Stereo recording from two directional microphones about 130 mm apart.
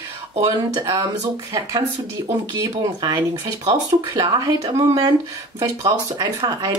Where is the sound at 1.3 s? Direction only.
30° right (ahead or behind).